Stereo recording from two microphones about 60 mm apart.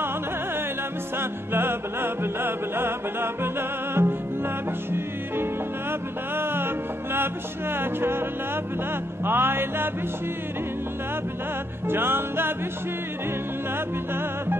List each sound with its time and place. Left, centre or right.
1.1 s music: right
9.2 s music: right
11.9 s music: right